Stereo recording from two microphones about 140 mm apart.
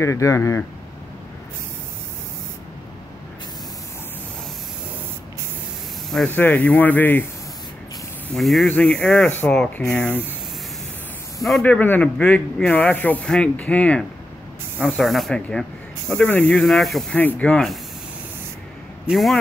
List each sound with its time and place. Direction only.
0.0 s speech: 20° left (ahead or behind)
6.0 s speech: 5° left (ahead or behind)
8.4 s speech: centre (ahead or behind)
11.3 s speech: centre (ahead or behind)
11.6 s speech: 10° left (ahead or behind)
19.0 s speech: centre (ahead or behind)